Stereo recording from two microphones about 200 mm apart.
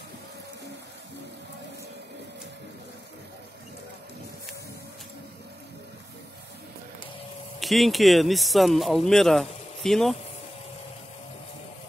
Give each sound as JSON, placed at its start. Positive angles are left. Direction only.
{"t": 7.6, "sound": "speech", "side_deg": 0}